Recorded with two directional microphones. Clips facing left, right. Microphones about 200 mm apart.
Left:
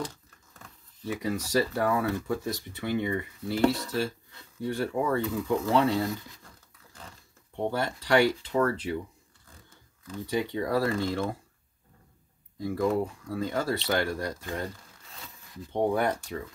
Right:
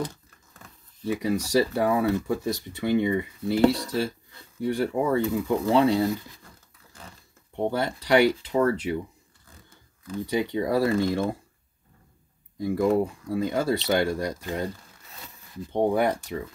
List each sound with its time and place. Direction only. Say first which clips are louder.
1.0 s speech: right 5 dB; 15° right (ahead or behind)
7.5 s speech: right 3 dB; 15° right (ahead or behind)
10.2 s speech: right 3 dB; 15° right (ahead or behind)
12.5 s speech: right 4 dB; 15° right (ahead or behind)
15.7 s speech: right 3 dB; 15° right (ahead or behind)